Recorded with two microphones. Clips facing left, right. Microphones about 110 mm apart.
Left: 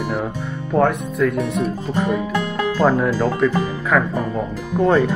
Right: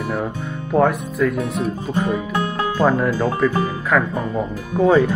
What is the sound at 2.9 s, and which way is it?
Speech, 5° left (ahead or behind).